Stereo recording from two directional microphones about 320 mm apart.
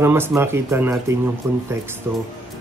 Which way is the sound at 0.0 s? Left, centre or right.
Centre.